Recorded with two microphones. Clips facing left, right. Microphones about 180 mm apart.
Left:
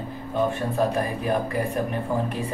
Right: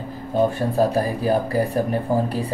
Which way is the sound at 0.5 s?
35° right (ahead or behind).